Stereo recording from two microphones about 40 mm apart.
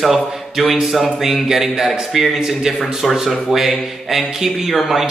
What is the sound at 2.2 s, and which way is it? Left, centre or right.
A man's voice, centre.